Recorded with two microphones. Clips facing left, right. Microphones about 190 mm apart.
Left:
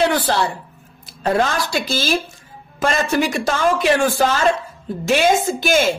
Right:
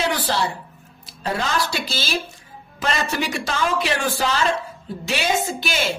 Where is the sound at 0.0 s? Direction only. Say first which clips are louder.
Left 5 dB; 55° left (ahead or behind).